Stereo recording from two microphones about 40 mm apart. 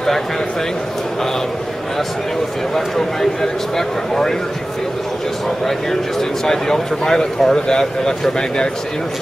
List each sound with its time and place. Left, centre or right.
2.7 s speech: centre
6.4 s speech: centre